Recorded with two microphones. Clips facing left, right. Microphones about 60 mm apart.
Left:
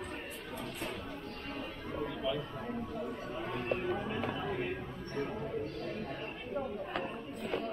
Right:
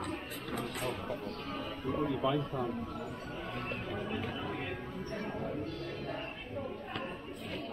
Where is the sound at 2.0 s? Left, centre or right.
Right.